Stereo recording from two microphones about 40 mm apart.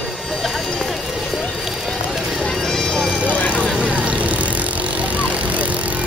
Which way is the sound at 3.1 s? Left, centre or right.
Right.